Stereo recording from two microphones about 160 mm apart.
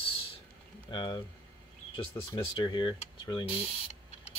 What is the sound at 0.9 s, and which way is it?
Speech, 30° left (ahead or behind).